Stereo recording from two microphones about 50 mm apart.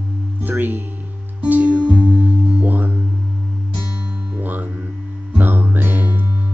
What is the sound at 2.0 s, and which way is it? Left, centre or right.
Music, right.